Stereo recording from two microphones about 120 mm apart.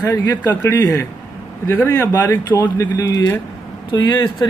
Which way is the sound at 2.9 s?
30° left (ahead or behind).